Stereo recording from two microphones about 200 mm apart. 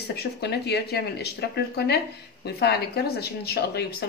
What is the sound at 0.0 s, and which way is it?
A woman's voice, 55° left (ahead or behind).